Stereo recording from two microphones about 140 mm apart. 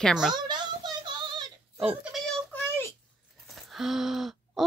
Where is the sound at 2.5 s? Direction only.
15° left (ahead or behind).